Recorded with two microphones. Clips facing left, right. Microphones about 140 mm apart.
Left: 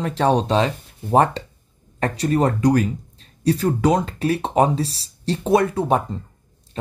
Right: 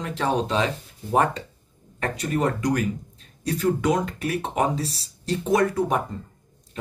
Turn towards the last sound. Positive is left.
turn(degrees=30)  # may be behind; listen again after turning